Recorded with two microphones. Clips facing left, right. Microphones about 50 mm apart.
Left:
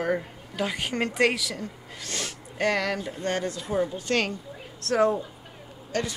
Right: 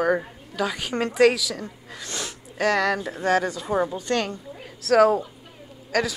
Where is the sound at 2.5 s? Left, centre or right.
Right.